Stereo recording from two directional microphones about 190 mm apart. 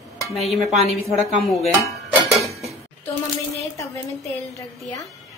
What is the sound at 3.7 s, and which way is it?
Speech, 15° left (ahead or behind).